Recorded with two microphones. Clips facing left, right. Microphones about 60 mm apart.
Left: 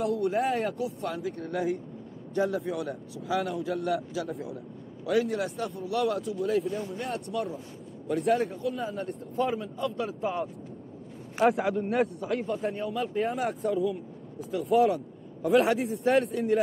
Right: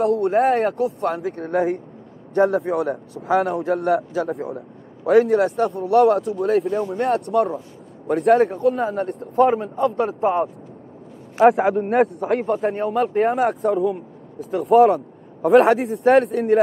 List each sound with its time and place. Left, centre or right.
0.0 s a man's voice: right
11.4 s a man's voice: right